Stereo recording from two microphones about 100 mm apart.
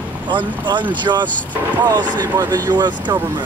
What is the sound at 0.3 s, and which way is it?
Speech, 50° right (ahead or behind).